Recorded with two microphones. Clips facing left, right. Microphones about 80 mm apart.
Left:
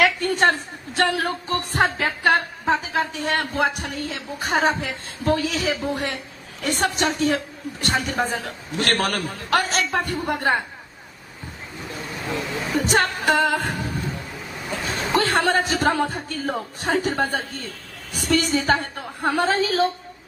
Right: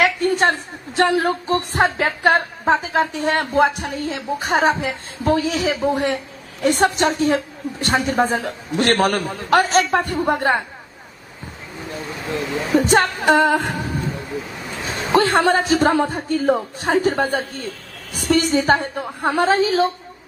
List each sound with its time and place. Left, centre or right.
0.0 s speech: right
12.7 s speech: right